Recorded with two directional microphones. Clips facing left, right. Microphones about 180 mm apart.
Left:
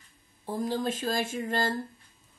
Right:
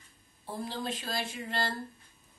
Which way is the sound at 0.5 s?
45° left (ahead or behind).